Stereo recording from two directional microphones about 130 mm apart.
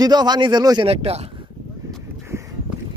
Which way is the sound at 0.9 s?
50° right (ahead or behind).